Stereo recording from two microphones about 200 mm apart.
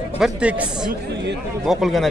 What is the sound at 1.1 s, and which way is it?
Speech, 60° right (ahead or behind).